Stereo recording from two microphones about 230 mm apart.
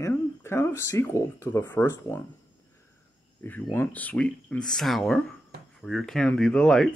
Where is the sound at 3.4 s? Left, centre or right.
Centre.